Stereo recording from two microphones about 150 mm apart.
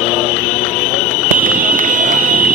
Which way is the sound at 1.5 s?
65° right (ahead or behind).